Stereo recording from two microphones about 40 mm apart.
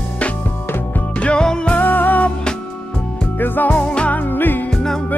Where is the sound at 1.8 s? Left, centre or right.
Left.